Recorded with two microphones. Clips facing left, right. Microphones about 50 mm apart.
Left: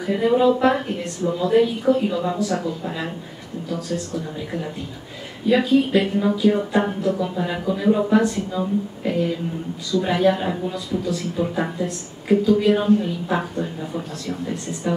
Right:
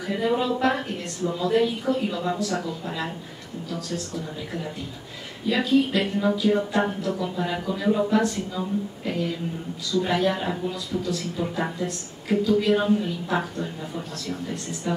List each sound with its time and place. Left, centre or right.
0.0 s speech: centre
5.5 s speech: centre
14.8 s speech: centre